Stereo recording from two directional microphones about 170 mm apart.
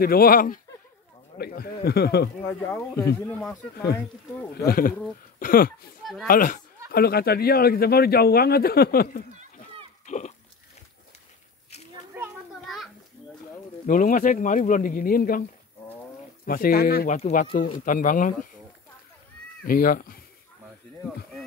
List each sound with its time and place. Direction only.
0.0 s a man's voice: 60° left (ahead or behind)
2.4 s speech: 15° left (ahead or behind)
4.6 s speech: 60° left (ahead or behind)
6.9 s speech: 65° left (ahead or behind)
10.0 s speech: 45° left (ahead or behind)
12.6 s children playing: centre (ahead or behind)
13.8 s speech: 55° left (ahead or behind)
16.4 s speech: 55° left (ahead or behind)
17.2 s speech: 50° left (ahead or behind)
19.6 s speech: 60° left (ahead or behind)